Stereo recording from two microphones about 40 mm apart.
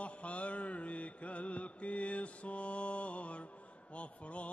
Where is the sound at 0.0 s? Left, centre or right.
Left.